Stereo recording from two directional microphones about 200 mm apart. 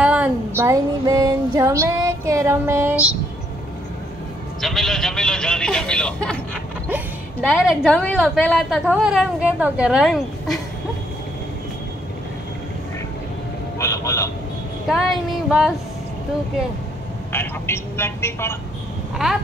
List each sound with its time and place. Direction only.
0.0 s a sound: 5° right (ahead or behind)
4.6 s a woman's voice: centre (ahead or behind)
7.4 s a woman's voice: 5° left (ahead or behind)
13.7 s speech: 15° left (ahead or behind)
14.9 s a woman's voice: centre (ahead or behind)
17.3 s speech: 10° left (ahead or behind)